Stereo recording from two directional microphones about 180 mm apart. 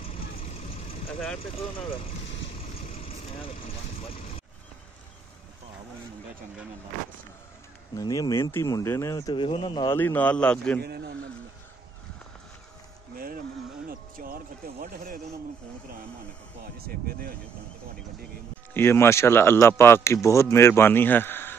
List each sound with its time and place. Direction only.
0.0 s vehicle: 35° left (ahead or behind)
1.4 s speech: 30° left (ahead or behind)
2.9 s vehicle: 35° left (ahead or behind)
7.9 s speech: 20° left (ahead or behind)
9.9 s speech: 10° left (ahead or behind)
14.1 s speech: 50° right (ahead or behind)
18.7 s speech: 15° left (ahead or behind)